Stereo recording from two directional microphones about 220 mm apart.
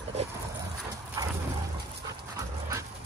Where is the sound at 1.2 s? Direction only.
15° right (ahead or behind).